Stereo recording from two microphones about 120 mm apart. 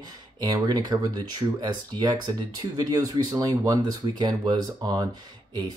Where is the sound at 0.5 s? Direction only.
35° right (ahead or behind).